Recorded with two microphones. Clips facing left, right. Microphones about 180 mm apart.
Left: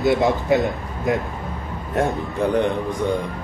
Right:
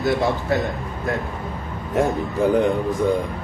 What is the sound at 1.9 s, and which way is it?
Speech, centre (ahead or behind).